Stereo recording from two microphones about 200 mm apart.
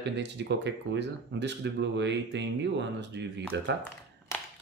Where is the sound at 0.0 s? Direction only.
60° right (ahead or behind).